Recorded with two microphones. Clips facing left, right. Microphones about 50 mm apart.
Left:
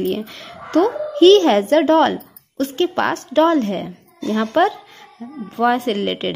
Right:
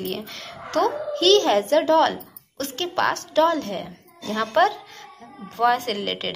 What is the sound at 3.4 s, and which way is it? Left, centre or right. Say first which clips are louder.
Speech: left 5 dB; left.